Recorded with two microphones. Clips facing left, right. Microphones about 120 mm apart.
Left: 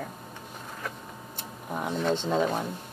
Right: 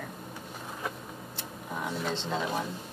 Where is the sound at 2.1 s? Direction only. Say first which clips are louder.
Left 9 dB; 50° left (ahead or behind).